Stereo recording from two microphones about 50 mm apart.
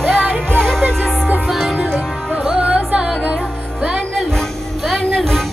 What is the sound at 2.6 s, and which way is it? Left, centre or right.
Music, right.